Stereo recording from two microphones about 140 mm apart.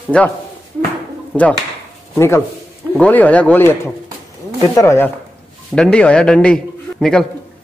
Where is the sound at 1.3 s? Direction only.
15° left (ahead or behind).